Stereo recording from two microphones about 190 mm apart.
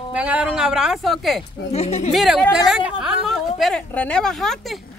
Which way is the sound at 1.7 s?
35° left (ahead or behind).